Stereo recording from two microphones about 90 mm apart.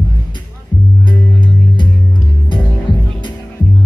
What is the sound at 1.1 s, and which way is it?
Music, 60° left (ahead or behind).